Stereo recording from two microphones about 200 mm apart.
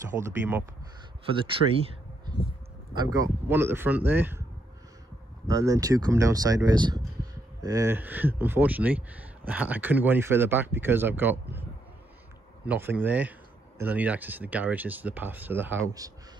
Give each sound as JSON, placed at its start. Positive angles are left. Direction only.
{"t": 0.2, "sound": "speech", "side_deg": -10}
{"t": 1.8, "sound": "a sound", "side_deg": -30}
{"t": 2.9, "sound": "speech", "side_deg": -20}
{"t": 5.5, "sound": "speech", "side_deg": -15}
{"t": 12.6, "sound": "speech", "side_deg": -10}